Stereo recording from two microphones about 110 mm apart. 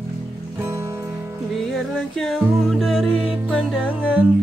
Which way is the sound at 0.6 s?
25° right (ahead or behind).